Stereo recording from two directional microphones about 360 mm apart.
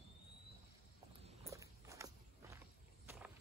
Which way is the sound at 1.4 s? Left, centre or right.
Centre.